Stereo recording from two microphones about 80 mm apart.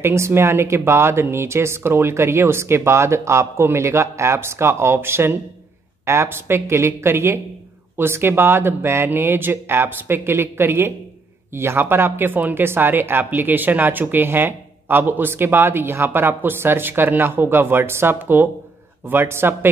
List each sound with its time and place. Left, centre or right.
0.0 s speech: right